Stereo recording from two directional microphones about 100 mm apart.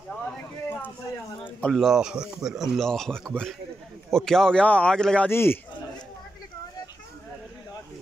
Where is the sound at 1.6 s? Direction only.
Centre (ahead or behind).